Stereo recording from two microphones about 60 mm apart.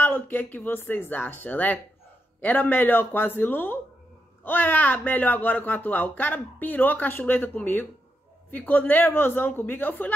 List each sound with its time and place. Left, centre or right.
0.0 s speech: left